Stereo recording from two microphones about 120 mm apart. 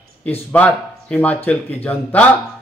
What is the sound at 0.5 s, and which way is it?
Speech, 10° left (ahead or behind).